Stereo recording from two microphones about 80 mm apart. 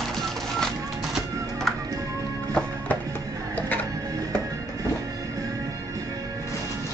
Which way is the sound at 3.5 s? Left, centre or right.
Left.